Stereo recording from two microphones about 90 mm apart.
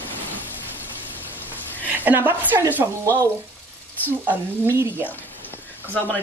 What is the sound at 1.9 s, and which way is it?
Speech, 20° right (ahead or behind).